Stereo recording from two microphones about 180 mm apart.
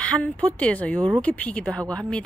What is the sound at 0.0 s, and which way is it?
Speech, 5° left (ahead or behind).